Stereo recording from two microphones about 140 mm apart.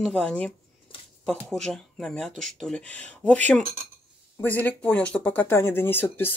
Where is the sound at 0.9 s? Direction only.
40° left (ahead or behind).